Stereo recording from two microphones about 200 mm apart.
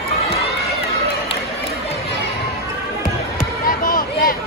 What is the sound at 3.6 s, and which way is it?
Basketball bounce, 45° left (ahead or behind).